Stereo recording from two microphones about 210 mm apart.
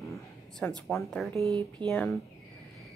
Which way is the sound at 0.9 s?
Centre (ahead or behind).